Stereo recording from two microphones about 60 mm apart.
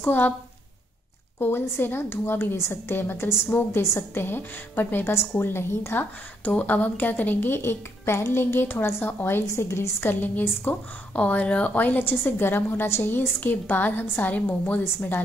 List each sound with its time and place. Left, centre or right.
0.0 s a woman's voice: left
1.4 s a woman's voice: left
6.6 s a woman's voice: left